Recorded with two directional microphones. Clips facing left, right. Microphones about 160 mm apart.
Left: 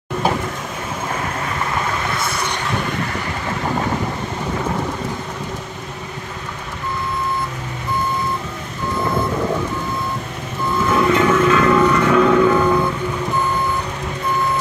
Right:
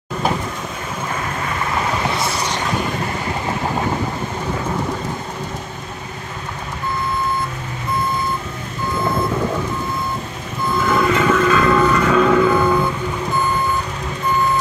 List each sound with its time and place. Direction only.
2.0 s vehicle: 25° right (ahead or behind)
10.9 s music: 10° left (ahead or behind)
12.4 s vehicle: 10° right (ahead or behind)